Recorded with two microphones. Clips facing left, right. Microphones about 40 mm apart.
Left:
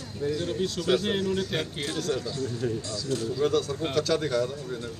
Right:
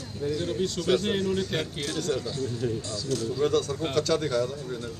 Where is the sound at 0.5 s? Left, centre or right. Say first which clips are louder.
Right 1 dB; centre.